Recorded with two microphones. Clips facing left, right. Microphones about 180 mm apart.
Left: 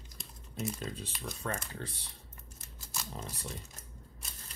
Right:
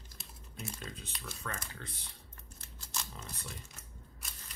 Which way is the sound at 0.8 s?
30° left (ahead or behind).